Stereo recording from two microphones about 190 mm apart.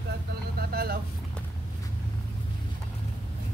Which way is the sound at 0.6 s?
55° right (ahead or behind).